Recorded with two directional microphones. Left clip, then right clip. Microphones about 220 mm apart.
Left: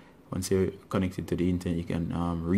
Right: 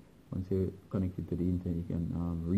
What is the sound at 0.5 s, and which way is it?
Speech, 20° left (ahead or behind).